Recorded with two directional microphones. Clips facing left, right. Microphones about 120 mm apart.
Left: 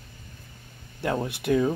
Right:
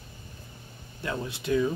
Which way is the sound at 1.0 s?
70° left (ahead or behind).